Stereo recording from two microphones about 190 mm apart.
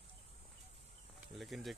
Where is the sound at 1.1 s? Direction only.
Centre (ahead or behind).